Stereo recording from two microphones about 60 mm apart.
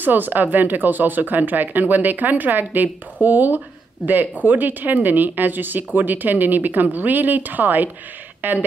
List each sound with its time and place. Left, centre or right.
0.0 s speech: right